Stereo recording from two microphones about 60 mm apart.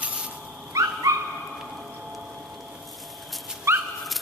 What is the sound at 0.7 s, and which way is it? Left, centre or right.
Dog, right.